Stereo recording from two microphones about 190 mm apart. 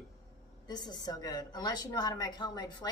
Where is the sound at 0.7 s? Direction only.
20° left (ahead or behind).